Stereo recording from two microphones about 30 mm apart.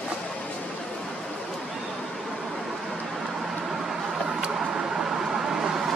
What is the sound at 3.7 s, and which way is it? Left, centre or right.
Vehicle, centre.